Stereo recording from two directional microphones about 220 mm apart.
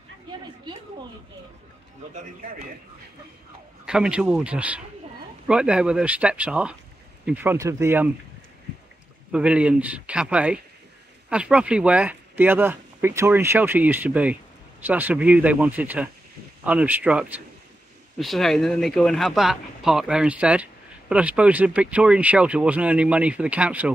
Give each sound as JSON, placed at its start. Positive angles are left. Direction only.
{"t": 3.8, "sound": "speech", "side_deg": -5}
{"t": 9.3, "sound": "speech", "side_deg": -5}